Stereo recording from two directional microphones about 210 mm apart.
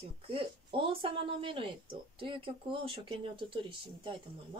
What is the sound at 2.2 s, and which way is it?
Speech, 25° right (ahead or behind).